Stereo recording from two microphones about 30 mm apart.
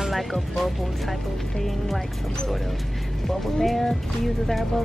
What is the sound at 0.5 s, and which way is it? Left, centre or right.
Speech, centre.